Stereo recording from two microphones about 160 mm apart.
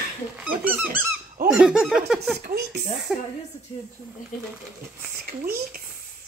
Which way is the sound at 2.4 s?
85° right.